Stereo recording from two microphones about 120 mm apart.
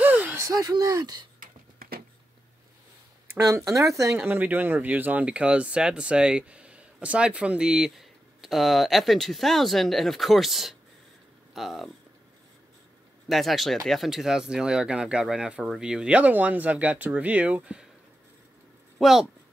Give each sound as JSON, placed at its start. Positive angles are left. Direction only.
{"t": 0.0, "sound": "a sound", "side_deg": -15}
{"t": 0.4, "sound": "speech", "side_deg": -30}
{"t": 3.3, "sound": "speech", "side_deg": -30}
{"t": 13.3, "sound": "speech", "side_deg": 0}
{"t": 18.9, "sound": "speech", "side_deg": 0}